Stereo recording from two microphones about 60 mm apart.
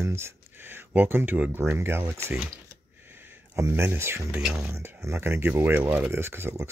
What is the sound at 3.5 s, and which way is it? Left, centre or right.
Speech, right.